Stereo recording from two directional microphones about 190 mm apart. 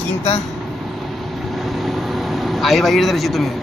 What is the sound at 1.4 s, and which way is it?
Vehicle, centre (ahead or behind).